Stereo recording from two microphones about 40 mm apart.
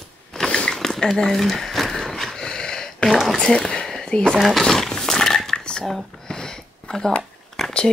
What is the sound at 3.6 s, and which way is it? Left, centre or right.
Speech, left.